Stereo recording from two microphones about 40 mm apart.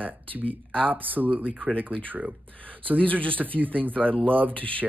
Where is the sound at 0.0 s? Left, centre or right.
Right.